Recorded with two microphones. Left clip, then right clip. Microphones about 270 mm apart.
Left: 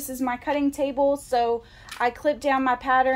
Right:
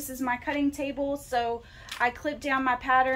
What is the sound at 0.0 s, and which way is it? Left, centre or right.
A woman's voice, left.